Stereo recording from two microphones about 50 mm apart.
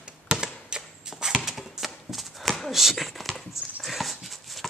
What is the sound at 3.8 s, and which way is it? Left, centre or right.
Dog, centre.